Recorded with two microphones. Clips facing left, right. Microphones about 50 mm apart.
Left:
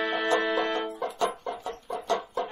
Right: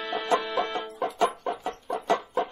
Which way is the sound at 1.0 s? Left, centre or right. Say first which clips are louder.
Right 3 dB; right.